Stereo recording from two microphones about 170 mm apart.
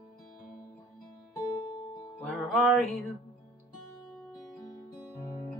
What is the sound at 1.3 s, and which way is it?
Music, 20° left (ahead or behind).